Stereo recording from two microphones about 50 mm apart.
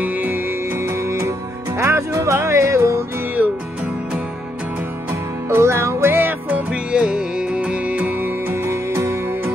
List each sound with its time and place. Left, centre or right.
0.0 s music: right
1.8 s music: right
5.5 s music: right
6.1 s music: right
6.9 s music: centre
8.6 s music: right